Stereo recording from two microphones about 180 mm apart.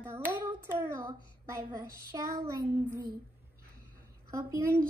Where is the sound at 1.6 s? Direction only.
20° right (ahead or behind).